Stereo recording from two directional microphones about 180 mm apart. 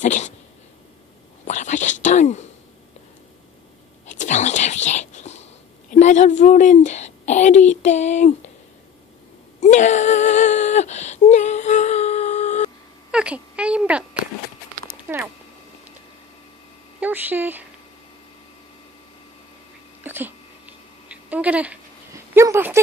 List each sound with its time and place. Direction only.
0.0 s cat: 40° left (ahead or behind)
1.5 s whispering: 45° left (ahead or behind)
4.1 s whispering: 40° left (ahead or behind)
5.9 s a woman's voice: 40° left (ahead or behind)
9.6 s a sound: 40° left (ahead or behind)
13.1 s a sound: 5° right (ahead or behind)
15.1 s cat: 10° right (ahead or behind)
17.0 s speech: 10° right (ahead or behind)
20.0 s a sound: 10° right (ahead or behind)